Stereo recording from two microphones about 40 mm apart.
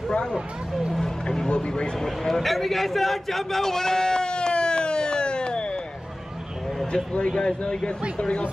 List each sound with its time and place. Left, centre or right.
1.2 s a man's voice: centre
2.0 s a sound: centre; by 5.8 s left
7.3 s a man's voice: centre